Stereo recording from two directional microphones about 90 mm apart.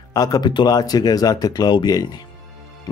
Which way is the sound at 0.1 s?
45° left (ahead or behind).